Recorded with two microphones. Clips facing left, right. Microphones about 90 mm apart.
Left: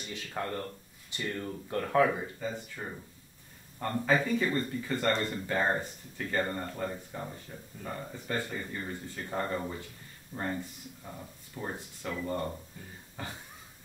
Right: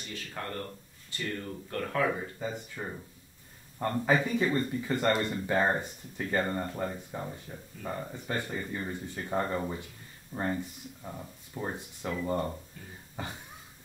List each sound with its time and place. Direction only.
0.1 s speech: 20° left (ahead or behind)
2.4 s speech: 15° right (ahead or behind)